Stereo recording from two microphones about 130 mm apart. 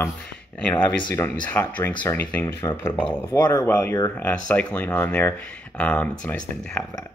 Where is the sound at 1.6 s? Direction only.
10° left (ahead or behind).